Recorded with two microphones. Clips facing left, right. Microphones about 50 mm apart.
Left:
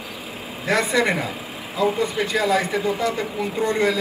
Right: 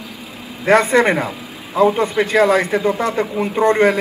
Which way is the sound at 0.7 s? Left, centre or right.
Right.